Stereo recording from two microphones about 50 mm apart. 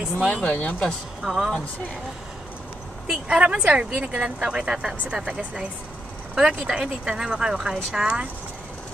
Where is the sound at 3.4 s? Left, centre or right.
Right.